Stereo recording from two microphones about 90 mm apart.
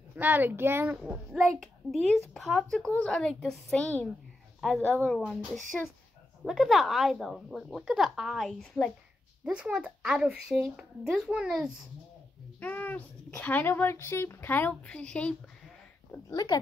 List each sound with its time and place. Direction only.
0.1 s a child's voice: 20° right (ahead or behind)
1.6 s speech: centre (ahead or behind)
2.9 s a woman's voice: 15° left (ahead or behind)
4.6 s speech: centre (ahead or behind)
9.4 s speech: 10° right (ahead or behind)
12.5 s a child's voice: 20° left (ahead or behind)
16.3 s speech: 50° left (ahead or behind)